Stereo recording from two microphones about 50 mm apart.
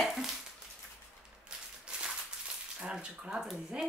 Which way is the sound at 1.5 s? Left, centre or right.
Centre.